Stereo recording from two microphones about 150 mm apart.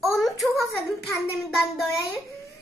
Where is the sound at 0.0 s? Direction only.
Centre (ahead or behind).